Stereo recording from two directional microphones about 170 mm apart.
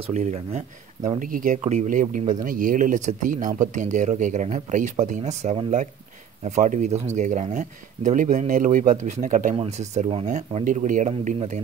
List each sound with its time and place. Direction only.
0.1 s speech: 40° right (ahead or behind)
1.2 s speech: 55° right (ahead or behind)